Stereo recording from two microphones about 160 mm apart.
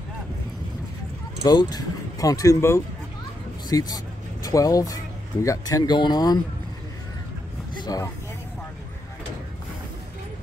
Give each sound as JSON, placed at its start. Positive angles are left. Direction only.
{"t": 1.4, "sound": "speech", "side_deg": 25}
{"t": 7.8, "sound": "speech", "side_deg": 25}